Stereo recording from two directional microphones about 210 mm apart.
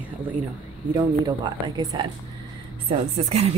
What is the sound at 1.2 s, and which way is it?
Speech, 20° right (ahead or behind).